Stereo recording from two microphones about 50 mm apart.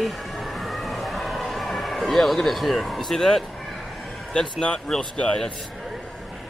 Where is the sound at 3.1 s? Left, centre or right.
Centre.